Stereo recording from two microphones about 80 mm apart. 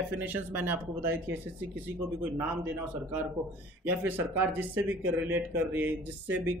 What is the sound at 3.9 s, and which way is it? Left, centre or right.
Speech, right.